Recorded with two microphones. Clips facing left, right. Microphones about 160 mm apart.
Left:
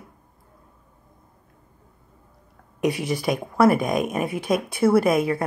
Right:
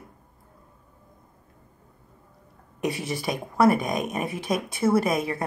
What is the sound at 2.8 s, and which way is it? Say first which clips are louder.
Speech: left 5 dB; 30° right (ahead or behind).